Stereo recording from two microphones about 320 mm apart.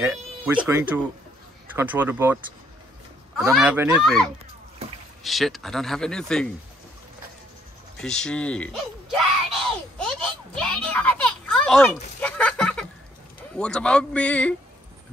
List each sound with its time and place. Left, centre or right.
0.0 s speech: centre
3.3 s speech: centre
8.0 s speech: centre
10.0 s a sound: centre
13.6 s speech: centre